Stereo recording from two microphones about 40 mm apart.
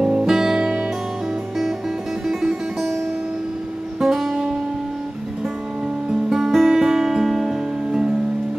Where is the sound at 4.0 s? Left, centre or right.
Centre.